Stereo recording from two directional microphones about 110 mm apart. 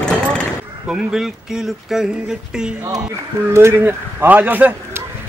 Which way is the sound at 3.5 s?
20° right (ahead or behind).